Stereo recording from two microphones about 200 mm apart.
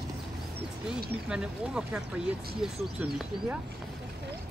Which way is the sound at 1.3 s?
5° right (ahead or behind).